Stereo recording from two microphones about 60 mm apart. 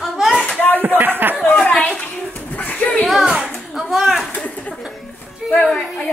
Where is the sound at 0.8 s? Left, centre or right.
Right.